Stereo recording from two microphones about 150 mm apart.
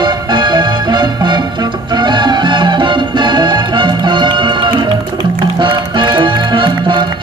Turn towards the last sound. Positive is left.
turn(degrees=-30)  # may be behind; listen again after turning